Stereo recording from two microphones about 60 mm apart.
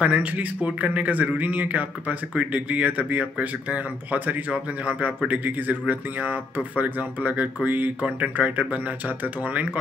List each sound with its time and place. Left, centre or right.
0.0 s speech: right